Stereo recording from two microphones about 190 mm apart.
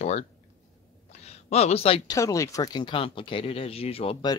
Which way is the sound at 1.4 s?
35° left (ahead or behind).